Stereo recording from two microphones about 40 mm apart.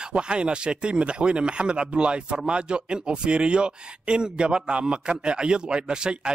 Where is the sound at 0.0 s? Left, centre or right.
Right.